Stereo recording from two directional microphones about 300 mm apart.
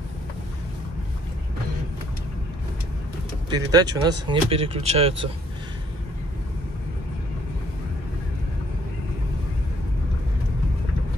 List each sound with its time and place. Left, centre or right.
3.4 s speech: centre